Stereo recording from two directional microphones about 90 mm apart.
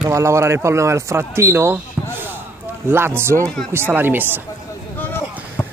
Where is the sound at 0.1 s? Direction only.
35° right (ahead or behind).